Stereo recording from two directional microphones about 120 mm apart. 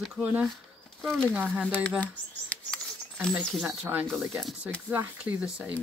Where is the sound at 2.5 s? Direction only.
5° left (ahead or behind).